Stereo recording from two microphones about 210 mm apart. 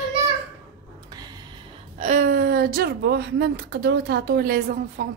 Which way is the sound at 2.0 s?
35° right (ahead or behind).